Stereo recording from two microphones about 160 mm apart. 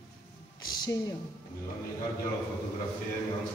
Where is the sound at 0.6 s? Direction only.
25° left (ahead or behind).